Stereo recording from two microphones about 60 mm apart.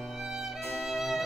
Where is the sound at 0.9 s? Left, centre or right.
Centre.